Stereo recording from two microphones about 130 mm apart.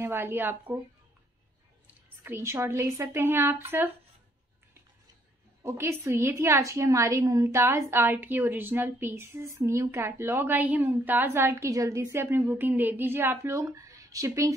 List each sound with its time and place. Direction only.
0.0 s a woman's voice: 15° right (ahead or behind)
2.2 s a woman's voice: 20° right (ahead or behind)
5.6 s a woman's voice: 20° right (ahead or behind)